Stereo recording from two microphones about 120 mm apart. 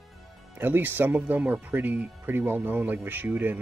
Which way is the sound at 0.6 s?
15° right (ahead or behind).